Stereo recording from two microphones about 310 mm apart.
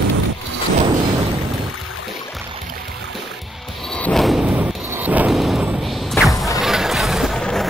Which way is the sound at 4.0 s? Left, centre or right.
Centre.